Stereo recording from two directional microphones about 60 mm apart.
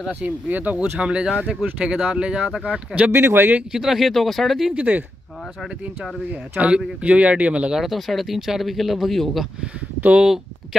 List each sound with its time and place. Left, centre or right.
0.1 s speech: right
3.1 s speech: right
3.7 s speech: centre
4.7 s speech: right
5.6 s speech: centre
7.0 s speech: right
7.7 s speech: centre
10.1 s speech: centre